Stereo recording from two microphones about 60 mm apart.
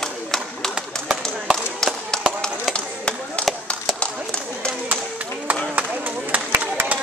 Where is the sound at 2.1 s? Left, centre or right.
Centre.